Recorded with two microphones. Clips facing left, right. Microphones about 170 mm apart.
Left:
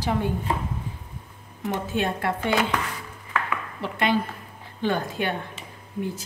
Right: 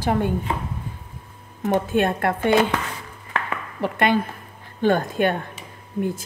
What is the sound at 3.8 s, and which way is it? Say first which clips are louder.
Speech: right 4 dB; 55° right (ahead or behind).